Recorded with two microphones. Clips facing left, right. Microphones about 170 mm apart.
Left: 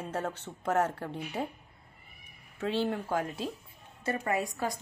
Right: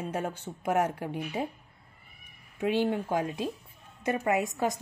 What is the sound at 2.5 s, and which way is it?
Speech, 15° right (ahead or behind).